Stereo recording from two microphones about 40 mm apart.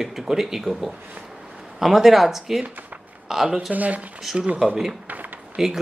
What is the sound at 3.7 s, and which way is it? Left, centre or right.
Speech, right.